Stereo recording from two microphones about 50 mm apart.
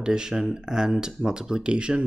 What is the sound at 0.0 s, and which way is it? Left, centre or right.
Speech, centre.